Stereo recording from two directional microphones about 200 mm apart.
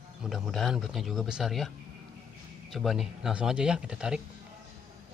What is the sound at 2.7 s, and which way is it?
Speech, centre (ahead or behind).